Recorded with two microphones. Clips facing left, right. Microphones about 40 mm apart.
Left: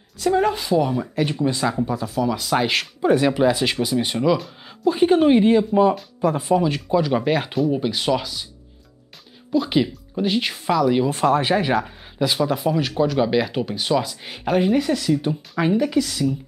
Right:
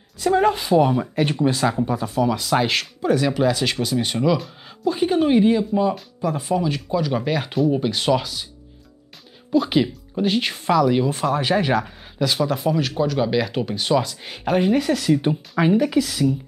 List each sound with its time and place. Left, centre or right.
0.2 s speech: centre
3.0 s speech: left; by 4.7 s centre
4.8 s speech: centre
7.4 s speech: centre
9.5 s speech: centre
11.1 s speech: left
11.5 s speech: centre
12.2 s speech: left
12.5 s speech: centre
15.0 s speech: right
15.5 s speech: centre